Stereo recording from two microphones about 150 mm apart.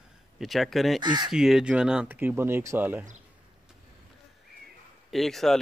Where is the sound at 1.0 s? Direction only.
30° right (ahead or behind).